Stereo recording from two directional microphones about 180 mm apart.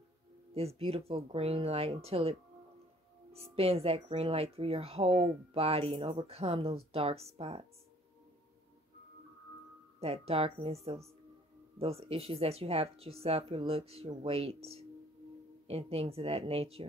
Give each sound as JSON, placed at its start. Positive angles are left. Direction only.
{"t": 0.6, "sound": "speech", "side_deg": -35}
{"t": 3.3, "sound": "speech", "side_deg": -35}
{"t": 9.9, "sound": "speech", "side_deg": -35}